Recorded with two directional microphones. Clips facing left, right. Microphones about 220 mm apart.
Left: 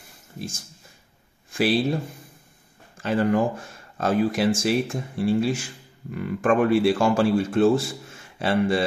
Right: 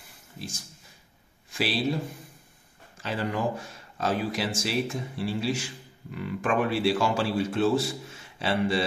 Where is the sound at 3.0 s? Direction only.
50° left (ahead or behind).